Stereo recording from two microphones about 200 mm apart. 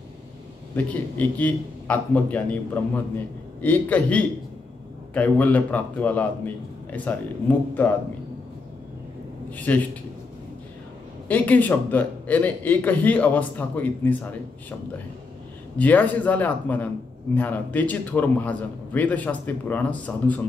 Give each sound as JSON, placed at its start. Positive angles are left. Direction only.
{"t": 0.7, "sound": "a man's voice", "side_deg": 10}
{"t": 9.5, "sound": "a man's voice", "side_deg": 10}
{"t": 11.2, "sound": "a man's voice", "side_deg": 10}
{"t": 15.8, "sound": "a man's voice", "side_deg": 10}